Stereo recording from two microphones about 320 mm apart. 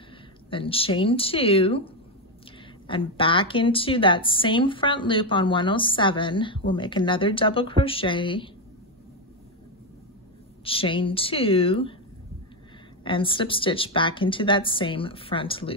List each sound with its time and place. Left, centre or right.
0.5 s a woman's voice: centre
2.9 s a woman's voice: centre
10.6 s a woman's voice: centre
13.0 s a woman's voice: centre